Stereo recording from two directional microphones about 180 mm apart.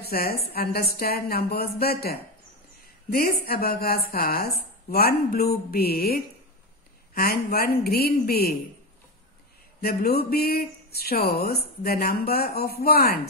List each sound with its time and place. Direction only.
0.0 s speech: 60° left (ahead or behind)
9.8 s speech: 60° left (ahead or behind)